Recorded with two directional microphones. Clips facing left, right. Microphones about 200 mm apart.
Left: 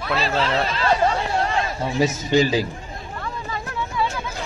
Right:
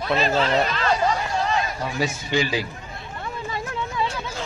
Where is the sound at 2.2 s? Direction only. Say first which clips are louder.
Left 6 dB; 40° left (ahead or behind).